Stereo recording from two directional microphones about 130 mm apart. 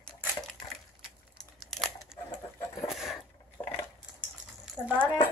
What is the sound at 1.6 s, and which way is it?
Tearing, centre (ahead or behind).